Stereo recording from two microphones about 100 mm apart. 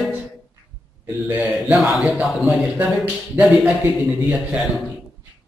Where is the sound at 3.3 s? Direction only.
15° right (ahead or behind).